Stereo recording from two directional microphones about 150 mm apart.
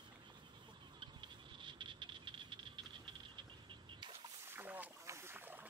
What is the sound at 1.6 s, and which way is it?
Frog, 35° right (ahead or behind).